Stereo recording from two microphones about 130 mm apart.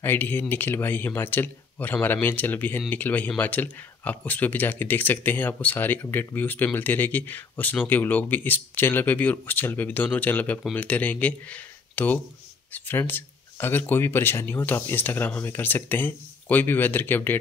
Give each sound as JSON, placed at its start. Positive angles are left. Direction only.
{"t": 0.0, "sound": "speech", "side_deg": 15}